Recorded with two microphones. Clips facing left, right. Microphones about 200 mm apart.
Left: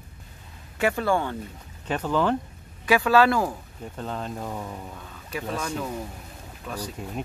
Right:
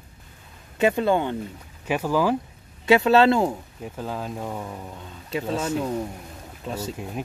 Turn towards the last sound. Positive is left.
turn(degrees=-25)  # may be behind; listen again after turning